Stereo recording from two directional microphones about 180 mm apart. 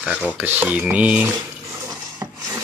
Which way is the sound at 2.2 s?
15° right (ahead or behind).